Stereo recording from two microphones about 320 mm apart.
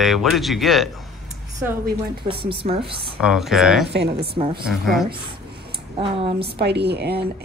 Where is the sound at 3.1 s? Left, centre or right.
Centre.